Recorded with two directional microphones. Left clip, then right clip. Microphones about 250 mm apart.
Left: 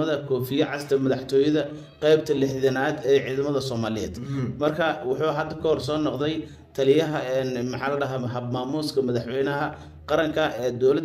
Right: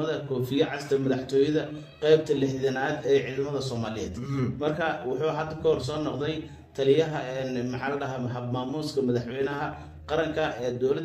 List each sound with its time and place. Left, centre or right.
0.0 s a man's voice: left